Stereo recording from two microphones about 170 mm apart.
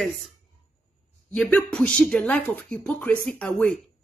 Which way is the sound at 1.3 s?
5° left (ahead or behind).